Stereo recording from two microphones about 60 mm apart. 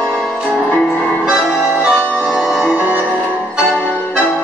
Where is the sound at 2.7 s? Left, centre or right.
Right.